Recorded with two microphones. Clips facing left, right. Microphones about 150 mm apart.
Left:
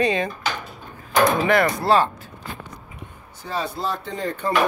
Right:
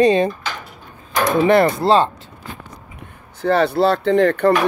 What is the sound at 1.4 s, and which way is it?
Speech, 30° right (ahead or behind).